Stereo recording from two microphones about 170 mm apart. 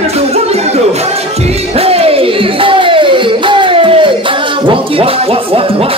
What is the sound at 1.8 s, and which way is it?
Music, 35° right (ahead or behind).